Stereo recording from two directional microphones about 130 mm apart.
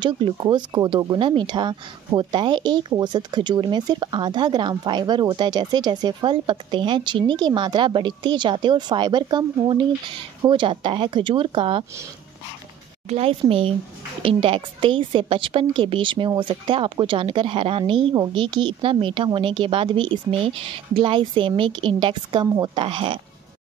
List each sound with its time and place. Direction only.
0.0 s speech: 35° right (ahead or behind)
10.5 s speech: 40° right (ahead or behind)
13.1 s a woman's voice: 45° right (ahead or behind)